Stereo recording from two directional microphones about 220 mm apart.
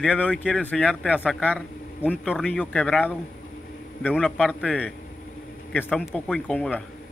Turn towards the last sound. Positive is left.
turn(degrees=5)  # may be behind; listen again after turning